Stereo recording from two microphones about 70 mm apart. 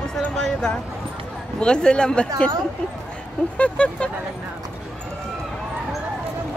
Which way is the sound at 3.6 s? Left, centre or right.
Centre.